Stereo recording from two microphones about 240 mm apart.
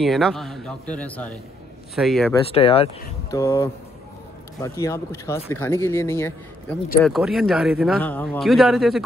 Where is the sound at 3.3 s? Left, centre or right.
Centre.